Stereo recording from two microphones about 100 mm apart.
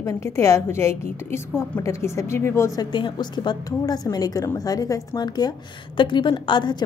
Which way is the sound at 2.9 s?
50° left (ahead or behind).